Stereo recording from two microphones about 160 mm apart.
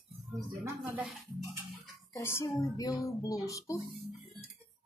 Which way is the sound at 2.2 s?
15° left (ahead or behind).